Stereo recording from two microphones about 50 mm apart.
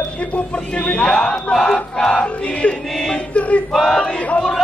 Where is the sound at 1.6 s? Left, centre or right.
Centre.